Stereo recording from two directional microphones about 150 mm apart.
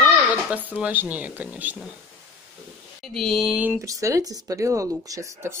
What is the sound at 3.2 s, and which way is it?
Speech, centre (ahead or behind).